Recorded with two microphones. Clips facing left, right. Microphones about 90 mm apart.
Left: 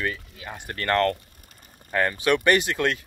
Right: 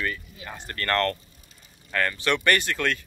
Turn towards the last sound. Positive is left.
turn(degrees=15)  # may be behind; listen again after turning